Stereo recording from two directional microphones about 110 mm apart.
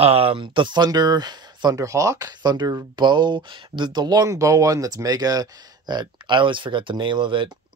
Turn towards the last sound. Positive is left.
turn(degrees=-45)  # may be behind; listen again after turning